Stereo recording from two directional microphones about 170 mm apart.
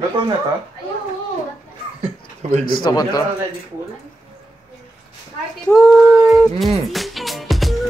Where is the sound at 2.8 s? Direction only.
20° left (ahead or behind).